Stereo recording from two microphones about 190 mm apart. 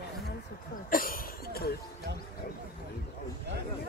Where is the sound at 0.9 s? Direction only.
50° left (ahead or behind).